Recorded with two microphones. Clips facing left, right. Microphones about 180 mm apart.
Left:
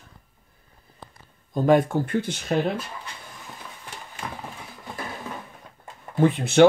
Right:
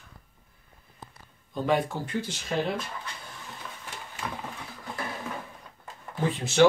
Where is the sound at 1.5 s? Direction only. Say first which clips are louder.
Left 7 dB; 45° left (ahead or behind).